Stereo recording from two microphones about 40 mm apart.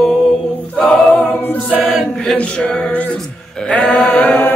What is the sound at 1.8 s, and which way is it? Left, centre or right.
A capella, centre.